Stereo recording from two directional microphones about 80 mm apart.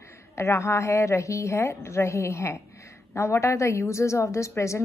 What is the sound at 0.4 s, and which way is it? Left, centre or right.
Speech, left.